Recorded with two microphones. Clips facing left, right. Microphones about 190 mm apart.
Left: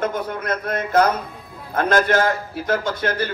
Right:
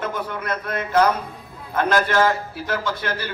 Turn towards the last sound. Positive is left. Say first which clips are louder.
# left 4 dB
turn(degrees=45)  # may be behind; listen again after turning